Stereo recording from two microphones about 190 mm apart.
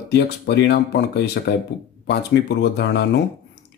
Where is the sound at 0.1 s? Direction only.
60° left (ahead or behind).